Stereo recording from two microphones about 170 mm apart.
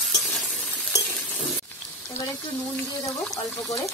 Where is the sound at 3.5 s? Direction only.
20° left (ahead or behind).